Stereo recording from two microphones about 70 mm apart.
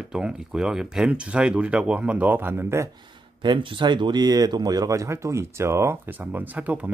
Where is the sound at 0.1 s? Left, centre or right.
Centre; by 2.9 s right.